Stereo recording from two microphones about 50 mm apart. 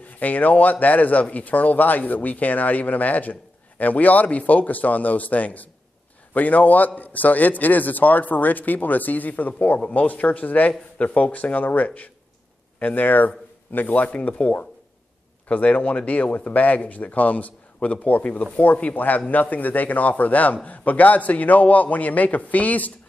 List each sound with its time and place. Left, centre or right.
0.2 s a man's voice: left
9.8 s speech: left
10.0 s a man's voice: left